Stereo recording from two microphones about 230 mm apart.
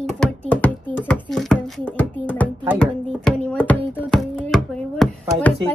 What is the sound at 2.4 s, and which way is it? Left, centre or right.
Music, centre.